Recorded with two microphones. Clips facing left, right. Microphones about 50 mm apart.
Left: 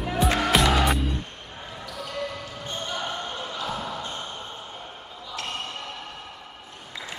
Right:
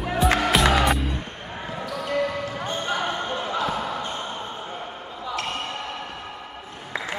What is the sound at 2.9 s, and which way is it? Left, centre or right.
Basketball bounce, right.